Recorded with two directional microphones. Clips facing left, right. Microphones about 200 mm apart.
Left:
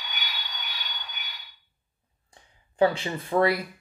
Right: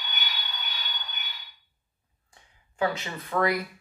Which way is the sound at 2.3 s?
30° left (ahead or behind).